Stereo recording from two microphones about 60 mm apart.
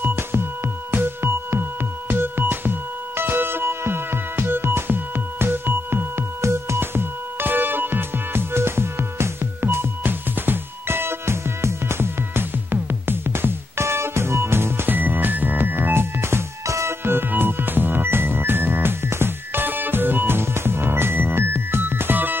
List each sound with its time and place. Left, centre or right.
0.0 s music: right
17.0 s music: right